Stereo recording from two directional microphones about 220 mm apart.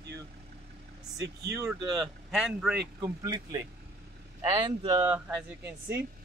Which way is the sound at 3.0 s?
20° right (ahead or behind).